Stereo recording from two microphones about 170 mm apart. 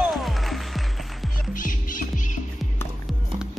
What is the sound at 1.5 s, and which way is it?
Music, 50° left (ahead or behind).